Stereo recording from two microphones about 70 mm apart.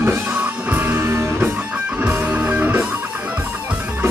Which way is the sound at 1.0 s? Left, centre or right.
Right.